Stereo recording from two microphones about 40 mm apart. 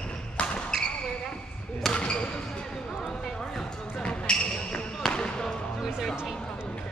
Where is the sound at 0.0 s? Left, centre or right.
Left; by 3.6 s centre.